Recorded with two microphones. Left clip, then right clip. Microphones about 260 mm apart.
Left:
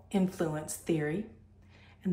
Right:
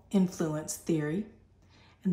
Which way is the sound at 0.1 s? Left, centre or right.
Centre.